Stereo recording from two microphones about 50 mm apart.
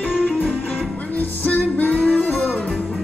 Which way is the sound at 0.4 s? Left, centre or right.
Left.